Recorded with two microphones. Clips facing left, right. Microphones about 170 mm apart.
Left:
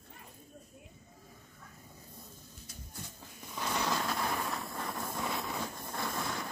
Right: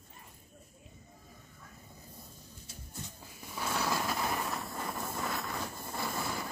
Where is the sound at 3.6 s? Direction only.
5° right (ahead or behind).